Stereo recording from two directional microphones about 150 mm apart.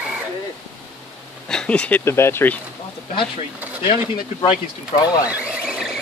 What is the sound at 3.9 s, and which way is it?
Speech, 40° left (ahead or behind).